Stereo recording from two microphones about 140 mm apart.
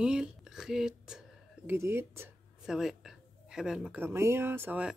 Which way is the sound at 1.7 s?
15° right (ahead or behind).